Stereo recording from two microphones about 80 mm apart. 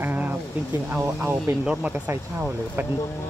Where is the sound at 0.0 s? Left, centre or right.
Right.